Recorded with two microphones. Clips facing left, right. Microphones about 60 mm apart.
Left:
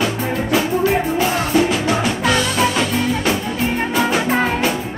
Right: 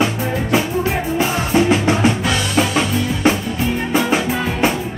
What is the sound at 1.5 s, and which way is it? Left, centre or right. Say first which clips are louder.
Music: right 4 dB; right.